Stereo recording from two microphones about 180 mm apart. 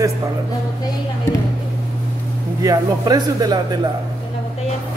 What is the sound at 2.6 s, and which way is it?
Speech, 20° right (ahead or behind).